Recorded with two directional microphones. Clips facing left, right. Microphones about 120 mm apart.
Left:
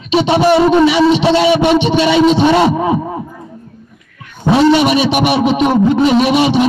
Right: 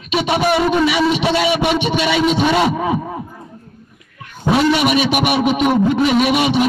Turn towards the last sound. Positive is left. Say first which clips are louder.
# left 4 dB
turn(degrees=30)  # may be behind; listen again after turning